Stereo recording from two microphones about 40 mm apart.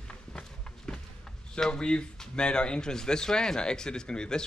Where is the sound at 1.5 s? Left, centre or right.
Centre.